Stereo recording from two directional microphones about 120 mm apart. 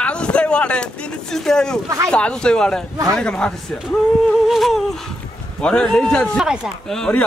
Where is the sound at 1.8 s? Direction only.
25° right (ahead or behind).